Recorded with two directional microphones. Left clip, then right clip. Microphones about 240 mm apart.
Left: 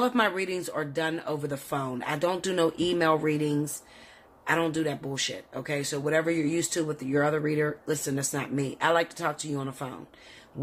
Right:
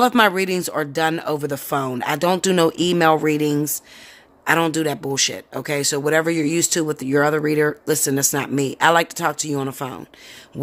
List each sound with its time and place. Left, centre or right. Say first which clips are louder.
0.0 s speech: right 10 dB; right